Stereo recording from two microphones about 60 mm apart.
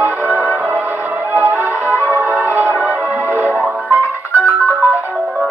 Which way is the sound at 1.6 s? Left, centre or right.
Left.